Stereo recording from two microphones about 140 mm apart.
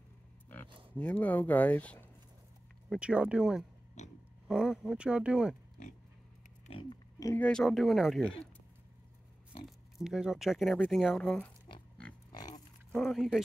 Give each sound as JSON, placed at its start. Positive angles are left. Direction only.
{"t": 0.9, "sound": "speech", "side_deg": 10}
{"t": 2.9, "sound": "speech", "side_deg": -10}
{"t": 4.0, "sound": "a sound", "side_deg": 55}
{"t": 4.5, "sound": "speech", "side_deg": -5}
{"t": 6.7, "sound": "oink", "side_deg": 35}
{"t": 7.3, "sound": "speech", "side_deg": 5}
{"t": 9.9, "sound": "speech", "side_deg": -5}
{"t": 12.3, "sound": "pig", "side_deg": 30}
{"t": 12.9, "sound": "speech", "side_deg": 0}